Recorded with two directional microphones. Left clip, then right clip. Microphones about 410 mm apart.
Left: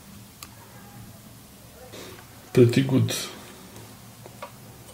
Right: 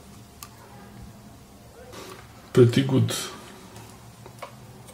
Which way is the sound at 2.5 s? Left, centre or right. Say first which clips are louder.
Even; centre.